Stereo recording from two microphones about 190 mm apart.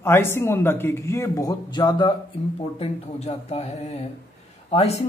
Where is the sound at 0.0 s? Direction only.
10° left (ahead or behind).